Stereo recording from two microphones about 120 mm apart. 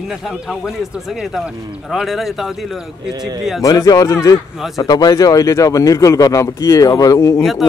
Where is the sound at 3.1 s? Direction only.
35° right (ahead or behind).